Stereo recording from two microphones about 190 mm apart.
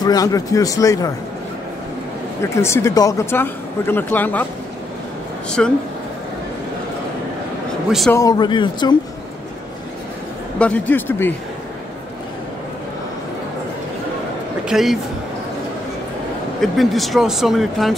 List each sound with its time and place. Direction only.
0.0 s speech: 20° left (ahead or behind)
2.4 s speech: 15° left (ahead or behind)
5.6 s speech: centre (ahead or behind)
8.1 s a man's voice: 20° left (ahead or behind)
10.6 s speech: 10° left (ahead or behind)
14.7 s speech: centre (ahead or behind)
16.6 s speech: centre (ahead or behind)